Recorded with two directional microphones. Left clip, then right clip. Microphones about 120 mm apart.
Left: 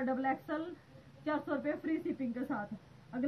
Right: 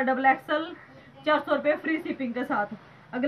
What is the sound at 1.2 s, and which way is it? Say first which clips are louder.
A woman's voice: right 12 dB; centre (ahead or behind).